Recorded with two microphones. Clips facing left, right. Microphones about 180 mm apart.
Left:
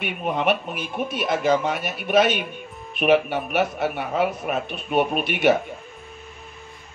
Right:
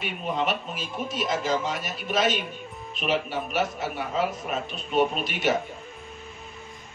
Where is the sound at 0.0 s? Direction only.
60° left (ahead or behind).